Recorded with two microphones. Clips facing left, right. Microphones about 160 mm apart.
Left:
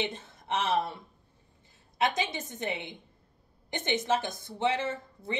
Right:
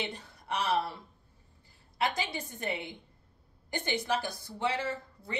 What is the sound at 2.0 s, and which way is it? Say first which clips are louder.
A woman's voice: left 3 dB; 20° left (ahead or behind).